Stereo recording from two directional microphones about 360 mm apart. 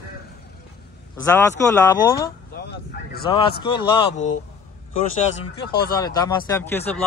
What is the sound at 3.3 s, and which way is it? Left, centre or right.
Speech, centre.